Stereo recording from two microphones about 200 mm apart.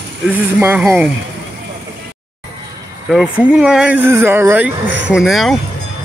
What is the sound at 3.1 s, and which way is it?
Speech, centre (ahead or behind).